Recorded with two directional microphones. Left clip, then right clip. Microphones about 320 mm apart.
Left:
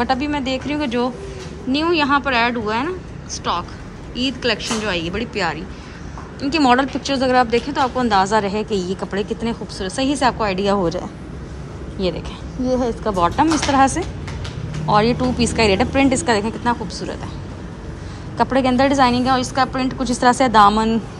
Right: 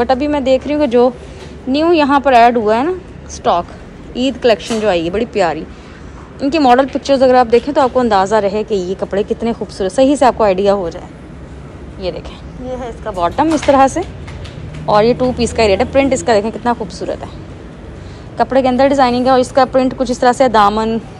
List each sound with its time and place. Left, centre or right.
0.0 s a woman's voice: centre
10.8 s a woman's voice: centre
18.4 s a woman's voice: centre